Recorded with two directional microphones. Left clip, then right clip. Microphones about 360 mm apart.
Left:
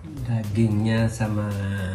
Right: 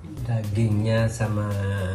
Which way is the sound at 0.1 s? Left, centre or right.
Centre.